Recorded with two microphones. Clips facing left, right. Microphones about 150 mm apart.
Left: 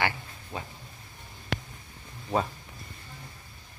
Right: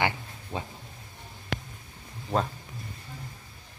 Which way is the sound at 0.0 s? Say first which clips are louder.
Right 1 dB; 20° right (ahead or behind).